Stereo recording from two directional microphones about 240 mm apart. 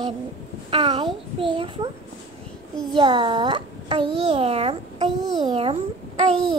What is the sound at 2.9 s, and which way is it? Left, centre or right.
A child's voice, centre.